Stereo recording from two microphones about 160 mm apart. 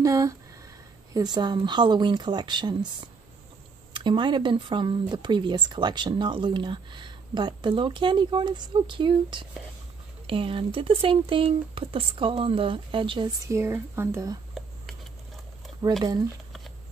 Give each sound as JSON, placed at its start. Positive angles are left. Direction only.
{"t": 0.0, "sound": "speech", "side_deg": -20}
{"t": 3.9, "sound": "speech", "side_deg": -30}
{"t": 13.5, "sound": "speech", "side_deg": -15}
{"t": 16.0, "sound": "speech", "side_deg": -25}